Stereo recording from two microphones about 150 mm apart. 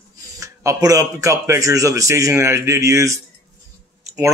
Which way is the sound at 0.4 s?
20° right (ahead or behind).